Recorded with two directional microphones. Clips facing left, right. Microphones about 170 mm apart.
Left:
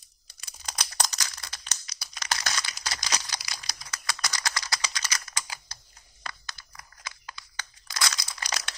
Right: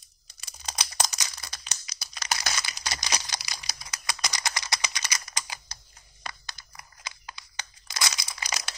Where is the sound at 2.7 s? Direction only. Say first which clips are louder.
Right 1 dB; 20° right (ahead or behind).